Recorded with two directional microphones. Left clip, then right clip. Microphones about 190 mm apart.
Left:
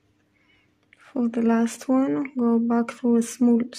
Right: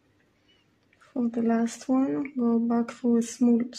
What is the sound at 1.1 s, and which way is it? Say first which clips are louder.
Speech: left 4 dB; 25° left (ahead or behind).